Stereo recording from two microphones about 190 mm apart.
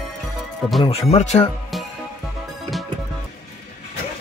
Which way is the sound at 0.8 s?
30° left (ahead or behind).